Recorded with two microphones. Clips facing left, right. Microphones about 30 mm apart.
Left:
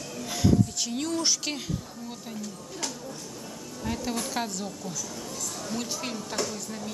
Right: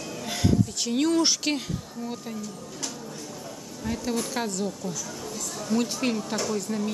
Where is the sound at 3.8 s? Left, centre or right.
Centre.